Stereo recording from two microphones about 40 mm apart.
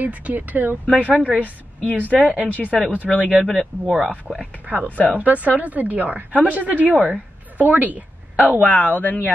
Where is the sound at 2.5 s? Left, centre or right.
Left.